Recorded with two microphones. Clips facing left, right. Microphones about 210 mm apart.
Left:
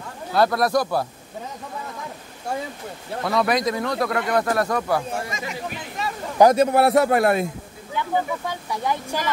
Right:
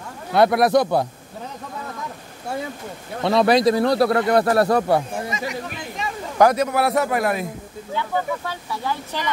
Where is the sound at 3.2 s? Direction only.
30° right (ahead or behind).